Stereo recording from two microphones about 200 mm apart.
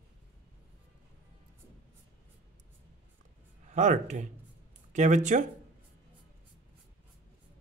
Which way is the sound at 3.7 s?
35° right (ahead or behind).